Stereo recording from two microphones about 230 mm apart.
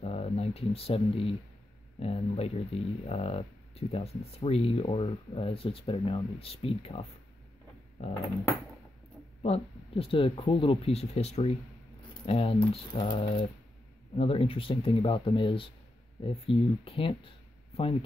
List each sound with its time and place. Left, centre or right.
0.0 s a sound: left
2.0 s speech: left
9.4 s speech: left